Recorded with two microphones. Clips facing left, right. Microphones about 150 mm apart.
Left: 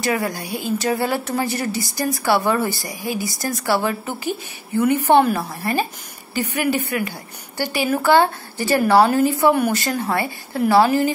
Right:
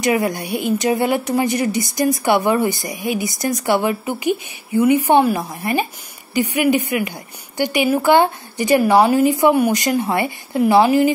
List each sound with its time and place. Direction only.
0.0 s a woman's voice: 20° right (ahead or behind)